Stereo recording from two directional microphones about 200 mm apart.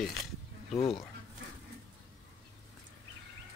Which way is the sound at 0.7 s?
30° left (ahead or behind).